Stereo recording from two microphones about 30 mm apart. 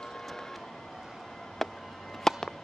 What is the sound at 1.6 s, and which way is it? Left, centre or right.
Music, centre.